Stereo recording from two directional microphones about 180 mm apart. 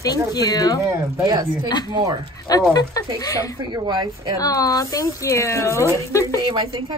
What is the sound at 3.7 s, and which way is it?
Speech, 25° right (ahead or behind).